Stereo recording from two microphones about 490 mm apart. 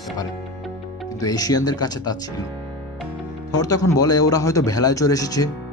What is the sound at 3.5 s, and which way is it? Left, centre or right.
Speech, centre.